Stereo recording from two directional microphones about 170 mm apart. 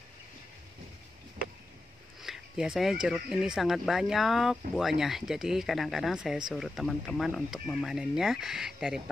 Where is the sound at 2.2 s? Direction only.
5° right (ahead or behind).